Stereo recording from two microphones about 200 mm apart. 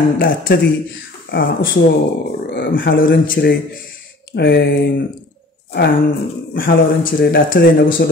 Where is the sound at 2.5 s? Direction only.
55° left (ahead or behind).